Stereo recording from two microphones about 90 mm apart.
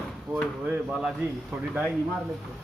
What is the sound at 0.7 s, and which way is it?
A man's voice, 15° right (ahead or behind).